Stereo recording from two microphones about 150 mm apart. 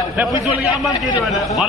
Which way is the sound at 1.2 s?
Centre (ahead or behind).